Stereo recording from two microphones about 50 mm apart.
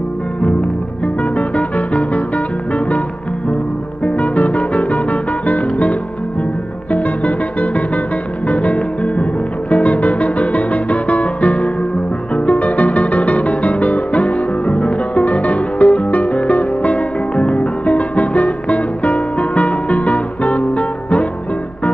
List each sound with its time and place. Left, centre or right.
1.0 s music: left
4.0 s music: left